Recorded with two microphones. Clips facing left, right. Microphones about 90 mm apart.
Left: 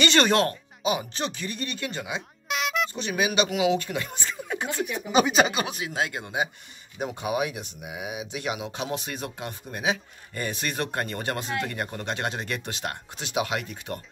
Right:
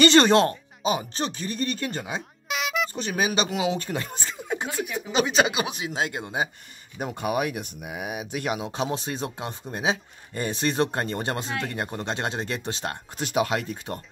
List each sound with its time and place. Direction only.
0.0 s speech: 35° right (ahead or behind)
2.4 s music: centre (ahead or behind)
2.9 s speech: 40° right (ahead or behind)
4.6 s speech: 5° right (ahead or behind)
5.5 s speech: 10° right (ahead or behind)
5.8 s speech: 25° right (ahead or behind)
7.0 s speech: 50° right (ahead or behind); by 13.0 s 30° right (ahead or behind)
13.2 s speech: 45° right (ahead or behind)